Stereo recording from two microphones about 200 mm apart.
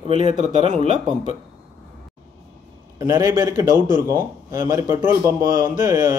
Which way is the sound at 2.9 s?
15° right (ahead or behind).